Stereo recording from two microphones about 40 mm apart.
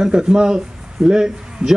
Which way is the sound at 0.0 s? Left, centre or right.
Centre.